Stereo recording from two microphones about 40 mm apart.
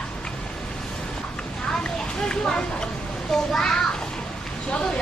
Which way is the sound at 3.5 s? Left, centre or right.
Centre.